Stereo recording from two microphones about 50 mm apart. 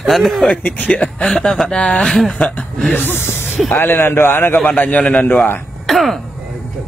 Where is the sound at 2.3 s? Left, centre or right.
Left.